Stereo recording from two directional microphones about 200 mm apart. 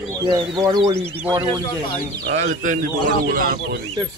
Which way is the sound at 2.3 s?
35° right (ahead or behind).